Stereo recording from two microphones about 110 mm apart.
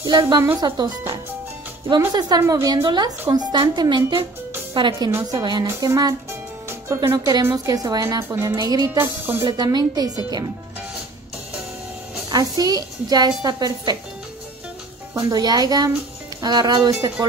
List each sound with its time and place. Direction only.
0.0 s a woman's voice: 40° right (ahead or behind)
2.1 s a woman's voice: 40° right (ahead or behind)
8.9 s speech: 20° right (ahead or behind)
9.4 s a woman's voice: 40° right (ahead or behind)
12.3 s a woman's voice: 35° right (ahead or behind)
15.1 s a woman's voice: 35° right (ahead or behind)